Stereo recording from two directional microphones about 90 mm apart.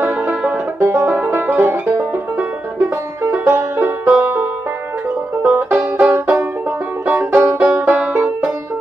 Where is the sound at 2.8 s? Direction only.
30° right (ahead or behind).